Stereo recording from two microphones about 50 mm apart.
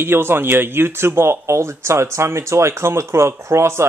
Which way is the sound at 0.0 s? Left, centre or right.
Right.